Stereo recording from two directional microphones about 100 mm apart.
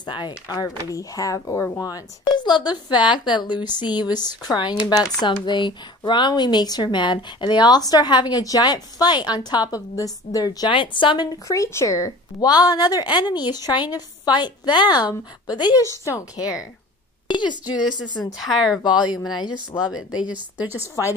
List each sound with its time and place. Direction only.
0.0 s speech: 50° left (ahead or behind)
0.5 s speech: 35° left (ahead or behind)
1.8 s speech: 40° left (ahead or behind)
10.7 s a woman's voice: 55° left (ahead or behind)
11.4 s speech: 30° left (ahead or behind)
16.1 s speech: 30° left (ahead or behind)
17.3 s speech: 50° left (ahead or behind)
18.4 s speech: 5° right (ahead or behind)
19.3 s speech: 45° left (ahead or behind)
20.2 s a woman's voice: 15° right (ahead or behind)